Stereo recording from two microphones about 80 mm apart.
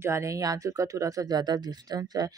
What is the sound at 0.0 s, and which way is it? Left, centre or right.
Speech, right.